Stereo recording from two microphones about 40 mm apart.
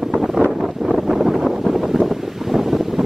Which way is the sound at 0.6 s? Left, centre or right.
Centre.